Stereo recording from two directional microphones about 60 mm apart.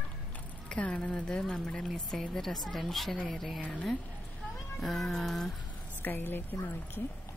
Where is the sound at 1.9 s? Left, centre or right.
Centre.